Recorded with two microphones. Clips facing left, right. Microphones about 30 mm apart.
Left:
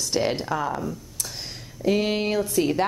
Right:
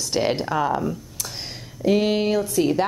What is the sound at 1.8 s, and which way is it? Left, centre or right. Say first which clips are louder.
Speech: right 3 dB; centre.